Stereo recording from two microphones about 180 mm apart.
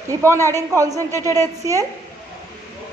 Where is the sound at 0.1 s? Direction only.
15° right (ahead or behind).